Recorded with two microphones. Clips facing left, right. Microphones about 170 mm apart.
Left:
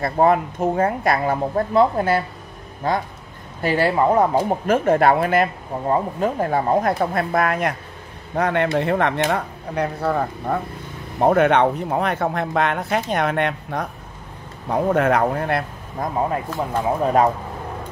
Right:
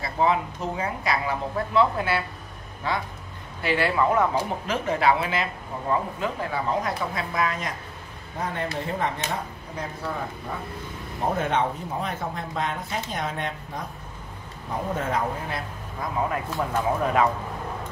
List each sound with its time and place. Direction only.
0.0 s a man's voice: 55° left (ahead or behind); by 4.3 s 35° left (ahead or behind)
4.5 s speech: 50° left (ahead or behind)
8.4 s speech: 70° left (ahead or behind)
16.0 s speech: 50° left (ahead or behind)
17.0 s a man's voice: 40° left (ahead or behind)